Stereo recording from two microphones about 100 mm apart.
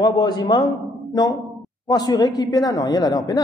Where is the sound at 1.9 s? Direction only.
40° left (ahead or behind).